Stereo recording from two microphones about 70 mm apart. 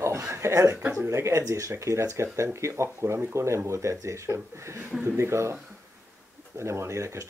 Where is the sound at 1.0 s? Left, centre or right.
Right.